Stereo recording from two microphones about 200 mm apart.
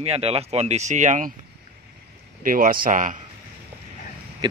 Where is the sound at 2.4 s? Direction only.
45° right (ahead or behind).